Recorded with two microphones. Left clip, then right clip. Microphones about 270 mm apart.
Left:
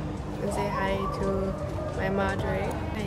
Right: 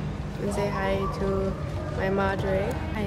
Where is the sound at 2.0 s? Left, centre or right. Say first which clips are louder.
Right 3 dB; centre.